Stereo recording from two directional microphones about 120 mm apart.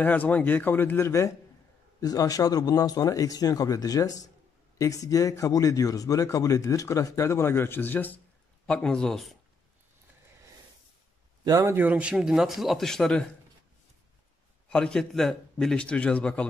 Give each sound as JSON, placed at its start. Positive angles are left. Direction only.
{"t": 0.0, "sound": "a man's voice", "side_deg": 15}
{"t": 11.4, "sound": "speech", "side_deg": -30}
{"t": 11.7, "sound": "a man's voice", "side_deg": -15}
{"t": 14.7, "sound": "a man's voice", "side_deg": 5}